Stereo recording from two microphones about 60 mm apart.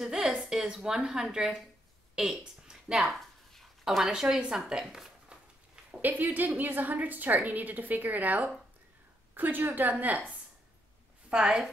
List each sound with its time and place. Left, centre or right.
0.0 s speech: centre
2.1 s a sound: centre
3.8 s speech: centre
5.9 s a woman's voice: right
11.2 s a woman's voice: centre